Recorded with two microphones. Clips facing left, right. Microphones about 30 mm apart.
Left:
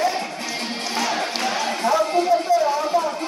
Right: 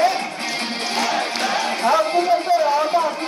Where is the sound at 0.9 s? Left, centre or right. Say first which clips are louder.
Right 2 dB; centre.